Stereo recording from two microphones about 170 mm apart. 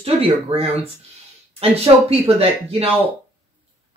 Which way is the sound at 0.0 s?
35° right (ahead or behind).